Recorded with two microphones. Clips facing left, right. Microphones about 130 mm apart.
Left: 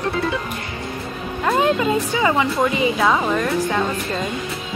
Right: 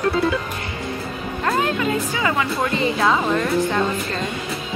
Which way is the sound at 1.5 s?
25° left (ahead or behind).